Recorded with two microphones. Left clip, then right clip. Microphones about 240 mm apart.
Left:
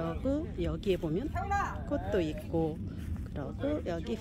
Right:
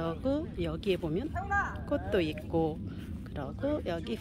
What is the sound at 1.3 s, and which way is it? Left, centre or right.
Speech, left.